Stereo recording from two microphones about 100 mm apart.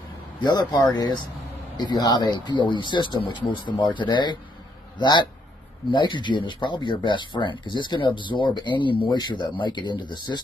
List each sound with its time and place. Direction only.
0.4 s speech: 45° left (ahead or behind)